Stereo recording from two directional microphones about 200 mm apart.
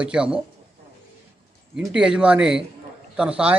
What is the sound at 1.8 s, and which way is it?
A man's voice, 5° right (ahead or behind).